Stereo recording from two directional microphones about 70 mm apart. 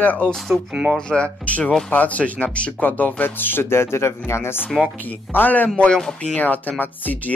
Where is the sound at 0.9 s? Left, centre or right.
Centre; by 4.5 s left.